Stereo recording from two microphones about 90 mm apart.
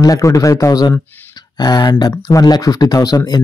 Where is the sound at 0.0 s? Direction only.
40° left (ahead or behind).